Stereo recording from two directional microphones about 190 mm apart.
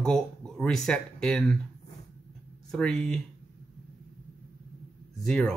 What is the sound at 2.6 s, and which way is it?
Speech, 5° left (ahead or behind).